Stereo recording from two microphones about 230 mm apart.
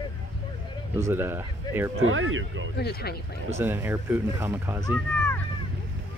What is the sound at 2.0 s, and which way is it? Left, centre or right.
Speech, right.